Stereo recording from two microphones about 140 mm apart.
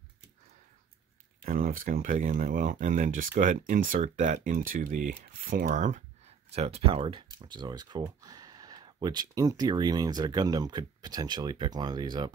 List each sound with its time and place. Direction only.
1.4 s speech: 80° right; by 12.3 s 30° right (ahead or behind)